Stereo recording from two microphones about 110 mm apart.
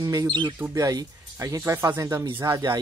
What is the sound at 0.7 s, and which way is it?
Speech, 30° right (ahead or behind).